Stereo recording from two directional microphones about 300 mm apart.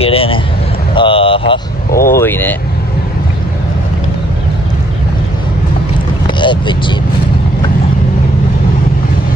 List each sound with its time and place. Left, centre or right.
0.0 s speech: centre
0.9 s a sound: centre
1.9 s speech: left
2.1 s speech: centre
6.2 s speech: centre